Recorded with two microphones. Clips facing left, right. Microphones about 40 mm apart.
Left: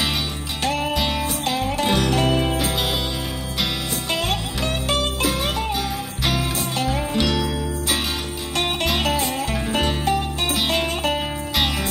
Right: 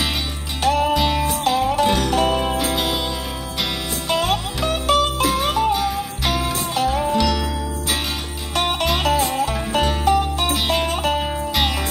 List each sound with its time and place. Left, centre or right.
0.6 s music: centre
4.1 s music: centre
7.2 s music: left
8.5 s music: centre